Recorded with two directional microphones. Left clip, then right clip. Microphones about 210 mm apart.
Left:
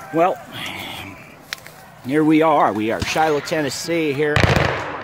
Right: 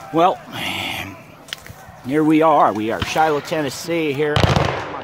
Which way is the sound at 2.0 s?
5° left (ahead or behind).